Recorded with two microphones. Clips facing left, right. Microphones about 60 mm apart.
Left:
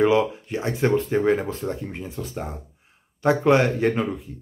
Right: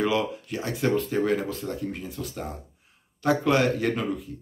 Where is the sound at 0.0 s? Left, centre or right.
Left.